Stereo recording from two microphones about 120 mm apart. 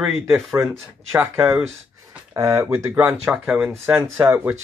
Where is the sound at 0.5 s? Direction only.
25° right (ahead or behind).